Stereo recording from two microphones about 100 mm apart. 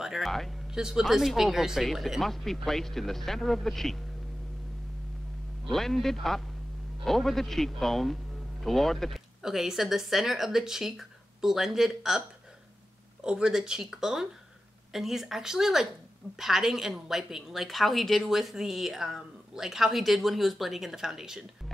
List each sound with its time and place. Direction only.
0.0 s a man's voice: centre (ahead or behind)
5.7 s a man's voice: 5° left (ahead or behind)
13.2 s a man's voice: 5° right (ahead or behind)